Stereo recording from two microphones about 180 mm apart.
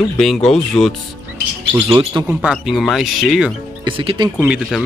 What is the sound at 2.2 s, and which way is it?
Speech, 5° right (ahead or behind).